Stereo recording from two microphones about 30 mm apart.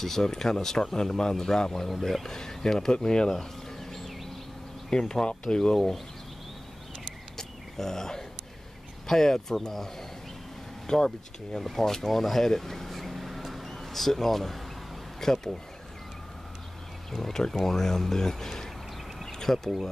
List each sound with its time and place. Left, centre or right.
0.0 s speech: centre
7.3 s a sound: centre
9.0 s speech: centre
10.9 s speech: left
17.1 s speech: centre